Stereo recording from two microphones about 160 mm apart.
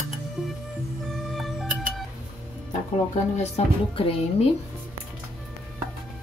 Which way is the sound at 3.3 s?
40° left (ahead or behind).